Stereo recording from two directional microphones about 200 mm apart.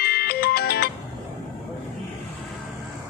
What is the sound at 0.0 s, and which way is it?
Music, 50° left (ahead or behind).